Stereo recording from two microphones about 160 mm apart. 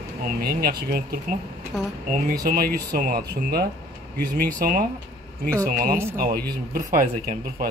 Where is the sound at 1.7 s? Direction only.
Centre (ahead or behind).